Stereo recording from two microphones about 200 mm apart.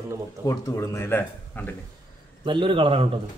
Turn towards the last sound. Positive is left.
turn(degrees=-25)  # may be behind; listen again after turning